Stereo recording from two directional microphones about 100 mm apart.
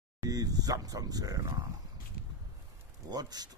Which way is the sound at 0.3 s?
40° right (ahead or behind).